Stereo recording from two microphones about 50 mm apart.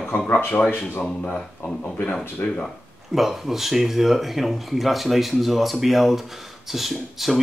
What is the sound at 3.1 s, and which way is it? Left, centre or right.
Speech, centre.